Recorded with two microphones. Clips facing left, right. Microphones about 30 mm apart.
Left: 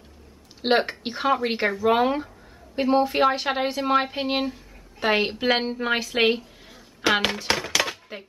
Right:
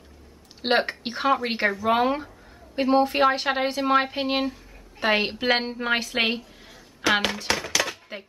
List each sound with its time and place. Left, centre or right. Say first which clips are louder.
0.6 s a woman's voice: left 1 dB; centre
7.0 s speech: left 1 dB; centre
7.4 s a sound: left 1 dB; centre